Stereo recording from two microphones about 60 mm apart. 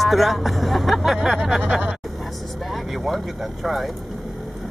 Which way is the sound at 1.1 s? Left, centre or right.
Centre.